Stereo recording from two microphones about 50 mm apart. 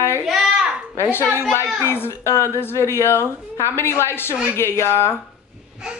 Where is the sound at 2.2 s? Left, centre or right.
Left.